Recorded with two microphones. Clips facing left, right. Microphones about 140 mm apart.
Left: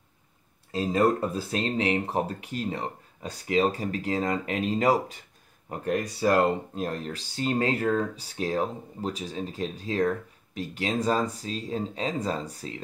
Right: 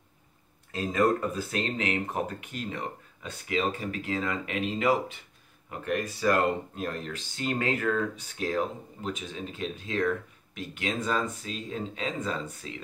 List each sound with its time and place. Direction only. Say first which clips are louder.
0.7 s speech: left 2 dB; 30° left (ahead or behind)